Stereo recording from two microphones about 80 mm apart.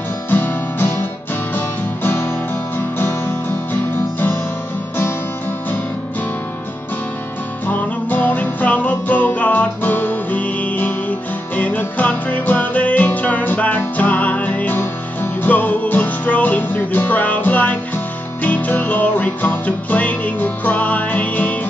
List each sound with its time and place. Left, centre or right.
0.3 s guitar: left
2.0 s guitar: left
3.7 s music: left
7.6 s music: left